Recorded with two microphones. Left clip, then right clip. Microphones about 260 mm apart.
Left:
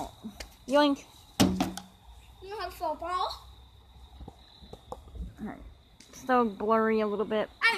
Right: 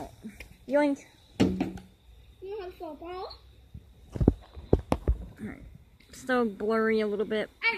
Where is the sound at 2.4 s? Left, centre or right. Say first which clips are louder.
Left 4 dB; left.